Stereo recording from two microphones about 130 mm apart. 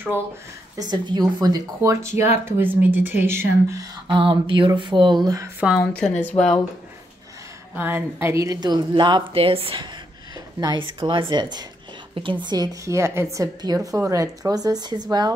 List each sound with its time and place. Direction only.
0.7 s a woman's voice: 35° right (ahead or behind)
4.1 s a woman's voice: 40° right (ahead or behind)
6.2 s speech: 5° left (ahead or behind)
7.7 s a woman's voice: 15° right (ahead or behind); by 9.8 s 45° right (ahead or behind)
10.3 s a woman's voice: 30° right (ahead or behind)